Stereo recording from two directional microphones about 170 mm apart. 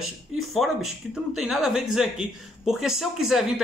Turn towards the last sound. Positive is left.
turn(degrees=0)  # may be behind; listen again after turning